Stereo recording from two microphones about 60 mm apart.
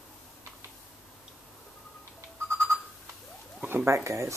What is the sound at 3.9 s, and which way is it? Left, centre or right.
Speech, right.